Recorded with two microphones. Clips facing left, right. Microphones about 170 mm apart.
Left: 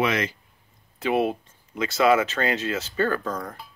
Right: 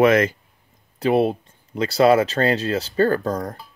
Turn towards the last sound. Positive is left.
turn(degrees=-35)  # may be behind; listen again after turning